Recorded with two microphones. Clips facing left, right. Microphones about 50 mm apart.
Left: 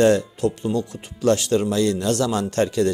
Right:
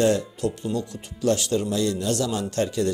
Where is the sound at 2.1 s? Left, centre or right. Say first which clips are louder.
Left 4 dB; left.